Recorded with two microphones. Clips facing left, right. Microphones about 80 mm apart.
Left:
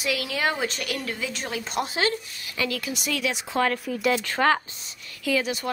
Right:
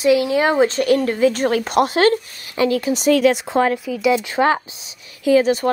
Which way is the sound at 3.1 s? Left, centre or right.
Right.